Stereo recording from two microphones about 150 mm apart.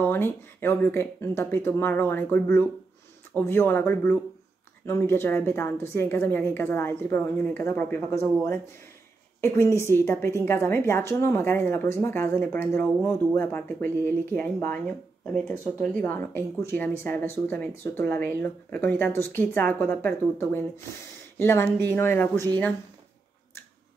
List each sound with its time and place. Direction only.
0.0 s speech: 15° left (ahead or behind)
9.4 s speech: 15° left (ahead or behind)